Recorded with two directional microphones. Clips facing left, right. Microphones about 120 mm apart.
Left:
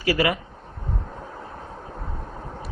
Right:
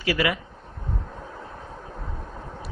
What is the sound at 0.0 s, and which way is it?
Speech, 40° left (ahead or behind).